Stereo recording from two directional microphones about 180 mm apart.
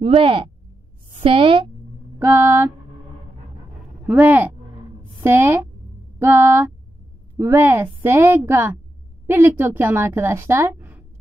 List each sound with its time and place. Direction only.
0.0 s speech: 30° right (ahead or behind)
2.1 s a woman's voice: 15° right (ahead or behind)
4.0 s a woman's voice: 10° right (ahead or behind)